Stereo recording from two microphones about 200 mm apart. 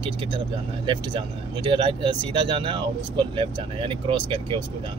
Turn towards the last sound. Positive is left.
turn(degrees=-25)  # may be behind; listen again after turning